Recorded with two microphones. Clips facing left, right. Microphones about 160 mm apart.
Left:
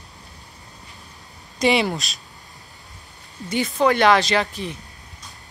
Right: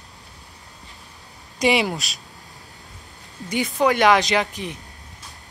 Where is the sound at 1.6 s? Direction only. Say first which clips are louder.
Left 1 dB; 10° right (ahead or behind).